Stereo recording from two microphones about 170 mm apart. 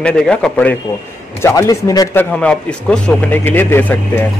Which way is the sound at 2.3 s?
5° left (ahead or behind).